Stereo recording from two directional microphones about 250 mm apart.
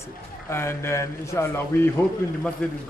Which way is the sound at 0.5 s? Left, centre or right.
Centre.